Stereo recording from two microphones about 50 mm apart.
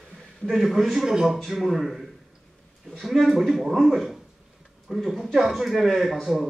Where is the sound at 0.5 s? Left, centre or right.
Centre.